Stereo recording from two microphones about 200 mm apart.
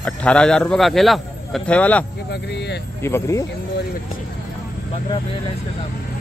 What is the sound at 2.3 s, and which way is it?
Speech, 55° left (ahead or behind).